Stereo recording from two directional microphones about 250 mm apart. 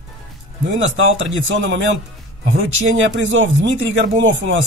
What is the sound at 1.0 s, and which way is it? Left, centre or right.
A man's voice, right.